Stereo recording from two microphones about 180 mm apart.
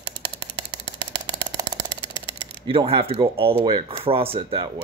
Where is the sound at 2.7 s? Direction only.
30° right (ahead or behind).